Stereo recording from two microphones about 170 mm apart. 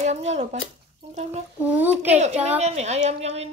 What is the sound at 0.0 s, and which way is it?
Speech, 40° right (ahead or behind).